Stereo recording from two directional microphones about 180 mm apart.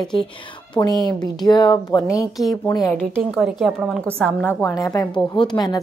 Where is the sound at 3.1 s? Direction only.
5° right (ahead or behind); by 5.8 s 25° left (ahead or behind).